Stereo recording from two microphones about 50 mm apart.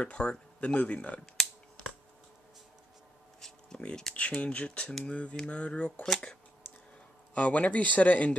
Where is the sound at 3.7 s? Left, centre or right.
Left.